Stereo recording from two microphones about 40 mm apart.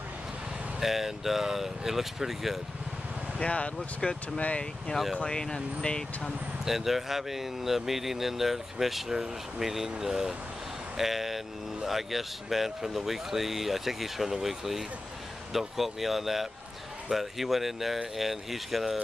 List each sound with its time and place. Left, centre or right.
0.7 s speech: centre
3.3 s speech: left
4.0 s speech: centre
4.4 s speech: left
6.6 s speech: centre